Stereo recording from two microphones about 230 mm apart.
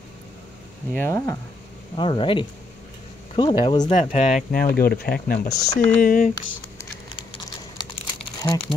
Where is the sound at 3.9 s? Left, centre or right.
Left.